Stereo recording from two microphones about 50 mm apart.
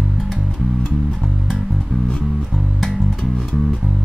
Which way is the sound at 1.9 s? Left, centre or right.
Centre.